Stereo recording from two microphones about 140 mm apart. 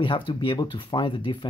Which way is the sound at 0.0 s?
35° left (ahead or behind).